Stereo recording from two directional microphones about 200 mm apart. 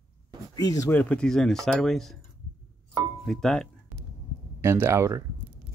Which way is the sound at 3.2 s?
Centre (ahead or behind).